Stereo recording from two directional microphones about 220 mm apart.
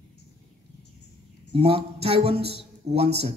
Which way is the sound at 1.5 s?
25° right (ahead or behind).